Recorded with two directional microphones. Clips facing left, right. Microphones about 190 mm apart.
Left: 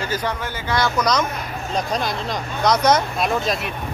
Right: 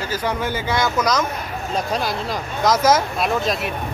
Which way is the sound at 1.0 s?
5° right (ahead or behind).